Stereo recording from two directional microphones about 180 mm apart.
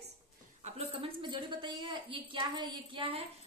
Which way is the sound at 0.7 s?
30° right (ahead or behind).